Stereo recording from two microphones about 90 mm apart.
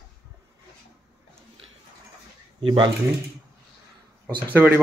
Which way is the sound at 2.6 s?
65° right (ahead or behind).